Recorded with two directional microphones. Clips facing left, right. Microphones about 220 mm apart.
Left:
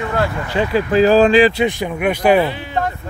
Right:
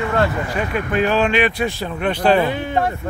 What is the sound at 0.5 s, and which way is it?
Speech, 30° left (ahead or behind).